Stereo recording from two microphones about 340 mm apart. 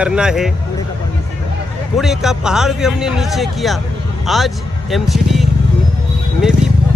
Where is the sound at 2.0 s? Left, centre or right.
Centre.